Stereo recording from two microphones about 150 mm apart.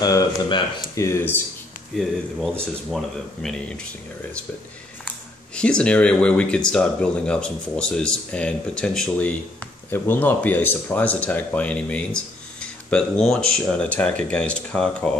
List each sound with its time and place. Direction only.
0.0 s speech: 25° left (ahead or behind)
1.9 s speech: centre (ahead or behind)
3.4 s speech: 5° left (ahead or behind)
5.0 s speech: 5° left (ahead or behind)